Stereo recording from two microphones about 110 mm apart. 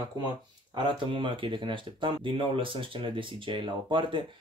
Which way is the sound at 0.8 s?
45° right (ahead or behind).